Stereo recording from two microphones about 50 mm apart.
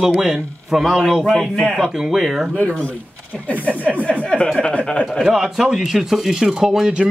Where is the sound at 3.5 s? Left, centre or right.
Left.